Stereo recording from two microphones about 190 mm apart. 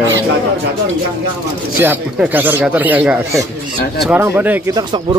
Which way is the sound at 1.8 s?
10° right (ahead or behind).